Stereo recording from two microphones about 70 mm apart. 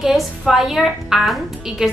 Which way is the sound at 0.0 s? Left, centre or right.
Centre.